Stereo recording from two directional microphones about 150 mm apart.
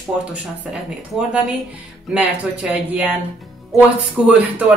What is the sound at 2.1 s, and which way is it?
Speech, 5° right (ahead or behind).